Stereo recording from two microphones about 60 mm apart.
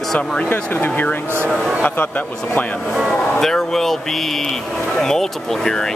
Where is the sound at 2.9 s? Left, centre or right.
Centre.